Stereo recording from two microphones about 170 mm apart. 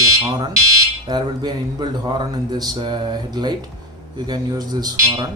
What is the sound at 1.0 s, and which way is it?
Speech, 25° right (ahead or behind).